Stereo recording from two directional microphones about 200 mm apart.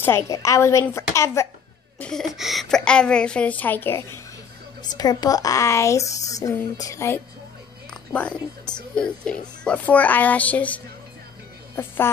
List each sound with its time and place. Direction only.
0.0 s speech: 15° left (ahead or behind)
2.0 s a woman's voice: 5° left (ahead or behind)